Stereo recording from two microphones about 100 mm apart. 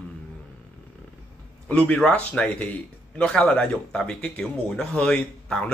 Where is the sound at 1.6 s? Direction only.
10° left (ahead or behind).